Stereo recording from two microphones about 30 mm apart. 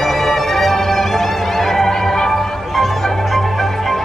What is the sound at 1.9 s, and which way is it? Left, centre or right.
Music, centre.